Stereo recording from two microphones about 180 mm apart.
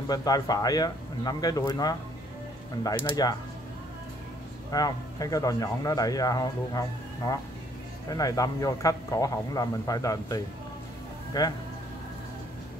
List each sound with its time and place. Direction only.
0.1 s speech: 20° left (ahead or behind)
3.2 s speech: 20° left (ahead or behind)
4.6 s speech: 20° left (ahead or behind)